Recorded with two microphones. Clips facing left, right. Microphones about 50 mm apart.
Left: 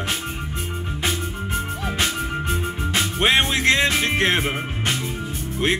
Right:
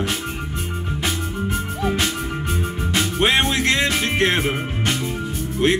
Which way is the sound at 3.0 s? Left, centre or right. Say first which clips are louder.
Right 1 dB; centre.